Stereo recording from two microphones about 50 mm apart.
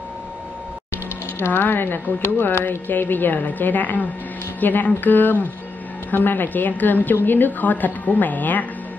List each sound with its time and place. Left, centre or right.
1.4 s a woman's voice: left